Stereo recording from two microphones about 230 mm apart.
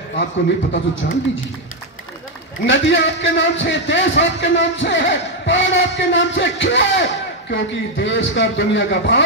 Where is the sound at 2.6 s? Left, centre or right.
Left.